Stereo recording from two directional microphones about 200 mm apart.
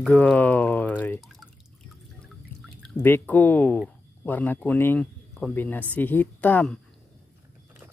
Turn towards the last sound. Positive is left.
turn(degrees=5)  # may be behind; listen again after turning